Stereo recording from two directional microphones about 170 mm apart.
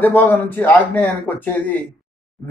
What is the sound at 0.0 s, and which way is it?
Speech, 10° left (ahead or behind).